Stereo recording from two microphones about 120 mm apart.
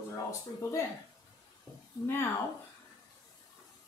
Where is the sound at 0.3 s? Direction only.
25° left (ahead or behind).